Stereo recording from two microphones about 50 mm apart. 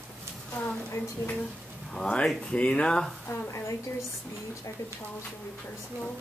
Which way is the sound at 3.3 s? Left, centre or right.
Left.